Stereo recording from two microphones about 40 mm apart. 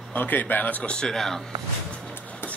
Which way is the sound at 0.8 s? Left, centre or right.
Left.